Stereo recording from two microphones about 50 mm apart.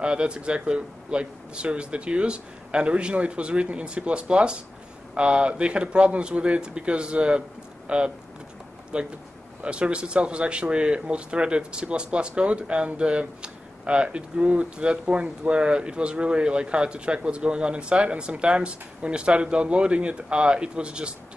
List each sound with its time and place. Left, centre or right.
0.0 s speech: right